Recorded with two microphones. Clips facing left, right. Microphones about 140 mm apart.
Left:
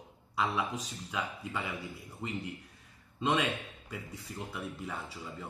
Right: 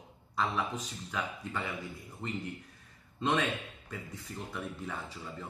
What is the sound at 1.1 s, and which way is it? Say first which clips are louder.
A man's voice: even; 5° left (ahead or behind).